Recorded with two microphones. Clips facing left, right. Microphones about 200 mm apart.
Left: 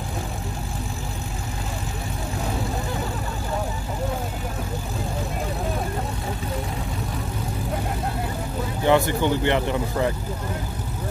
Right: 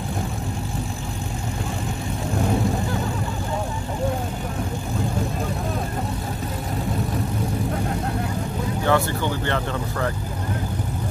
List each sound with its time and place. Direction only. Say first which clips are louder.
8.8 s speech: left 3 dB; 15° left (ahead or behind)